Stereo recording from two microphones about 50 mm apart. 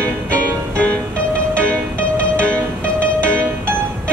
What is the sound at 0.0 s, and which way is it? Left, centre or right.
Music, left.